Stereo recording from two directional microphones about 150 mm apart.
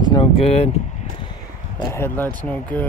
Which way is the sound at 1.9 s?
15° left (ahead or behind).